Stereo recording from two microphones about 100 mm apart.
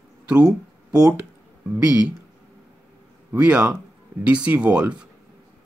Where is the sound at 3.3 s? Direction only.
15° right (ahead or behind).